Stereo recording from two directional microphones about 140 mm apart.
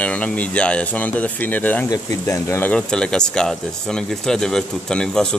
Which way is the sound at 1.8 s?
25° left (ahead or behind).